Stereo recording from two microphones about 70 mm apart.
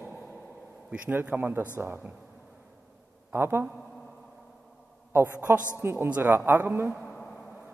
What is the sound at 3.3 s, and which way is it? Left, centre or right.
Speech, right.